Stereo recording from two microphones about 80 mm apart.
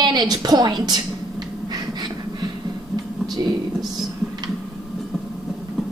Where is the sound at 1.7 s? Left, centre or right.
Right.